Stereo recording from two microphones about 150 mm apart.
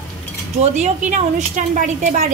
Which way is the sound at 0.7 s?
50° right (ahead or behind).